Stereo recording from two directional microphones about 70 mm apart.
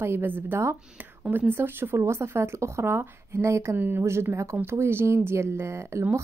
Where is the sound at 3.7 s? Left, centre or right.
Right.